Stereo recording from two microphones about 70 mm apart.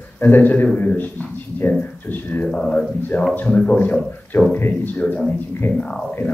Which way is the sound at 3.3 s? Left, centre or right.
Left.